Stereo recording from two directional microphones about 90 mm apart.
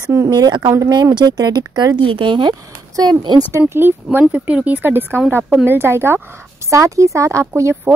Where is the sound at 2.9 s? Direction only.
50° right (ahead or behind).